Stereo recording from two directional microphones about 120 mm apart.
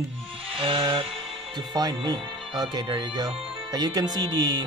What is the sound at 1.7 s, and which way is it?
Speech, 35° right (ahead or behind).